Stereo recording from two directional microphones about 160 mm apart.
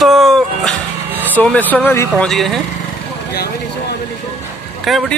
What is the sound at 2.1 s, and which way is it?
Speech, centre (ahead or behind).